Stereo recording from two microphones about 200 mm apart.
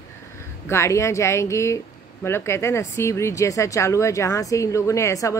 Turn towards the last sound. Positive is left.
turn(degrees=15)  # may be behind; listen again after turning